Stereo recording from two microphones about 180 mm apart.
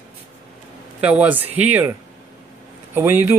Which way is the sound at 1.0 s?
10° right (ahead or behind).